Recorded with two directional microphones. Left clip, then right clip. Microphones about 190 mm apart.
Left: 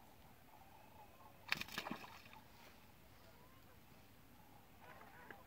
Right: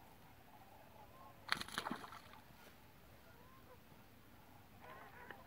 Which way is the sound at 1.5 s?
25° left (ahead or behind).